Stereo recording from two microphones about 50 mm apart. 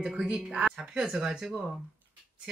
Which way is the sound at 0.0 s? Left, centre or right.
Centre.